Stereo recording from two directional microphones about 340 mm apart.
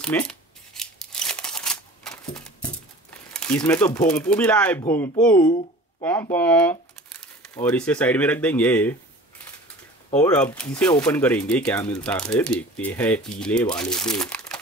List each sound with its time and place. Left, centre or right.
0.0 s scissors: centre
5.2 s speech: centre
5.5 s a sound: centre
6.3 s speech: centre
10.3 s speech: centre